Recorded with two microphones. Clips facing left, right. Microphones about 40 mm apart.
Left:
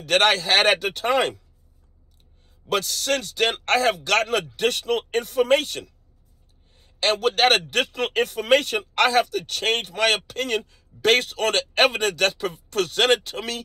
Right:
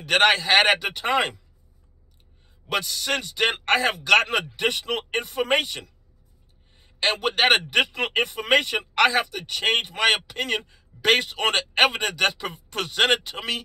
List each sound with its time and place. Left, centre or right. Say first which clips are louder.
0.0 s speech: even; centre
2.7 s a man's voice: left 2 dB; centre